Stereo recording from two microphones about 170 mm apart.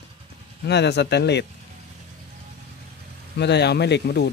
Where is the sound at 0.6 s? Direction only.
85° left.